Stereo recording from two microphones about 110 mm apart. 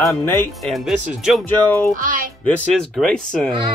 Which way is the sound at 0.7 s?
Centre (ahead or behind).